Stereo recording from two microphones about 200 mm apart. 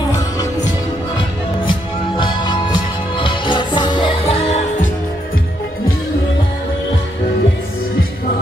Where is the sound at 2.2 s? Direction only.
25° left (ahead or behind).